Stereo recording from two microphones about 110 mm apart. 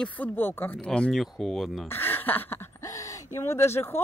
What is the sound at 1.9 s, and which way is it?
Speech, 20° left (ahead or behind).